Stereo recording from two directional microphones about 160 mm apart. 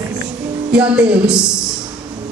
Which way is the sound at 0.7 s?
5° right (ahead or behind).